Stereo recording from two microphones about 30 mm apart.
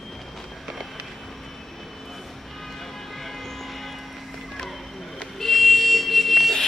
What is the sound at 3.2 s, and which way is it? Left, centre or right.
Vehicle, centre.